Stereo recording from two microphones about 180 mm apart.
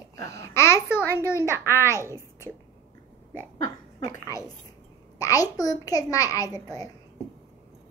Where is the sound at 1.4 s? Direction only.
15° right (ahead or behind).